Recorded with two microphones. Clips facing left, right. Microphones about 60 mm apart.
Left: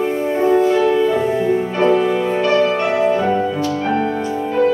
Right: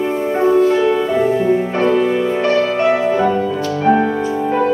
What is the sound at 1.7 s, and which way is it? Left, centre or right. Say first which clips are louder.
Music: even; right.